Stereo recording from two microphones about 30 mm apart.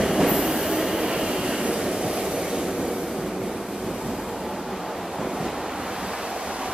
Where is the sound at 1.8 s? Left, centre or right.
Right.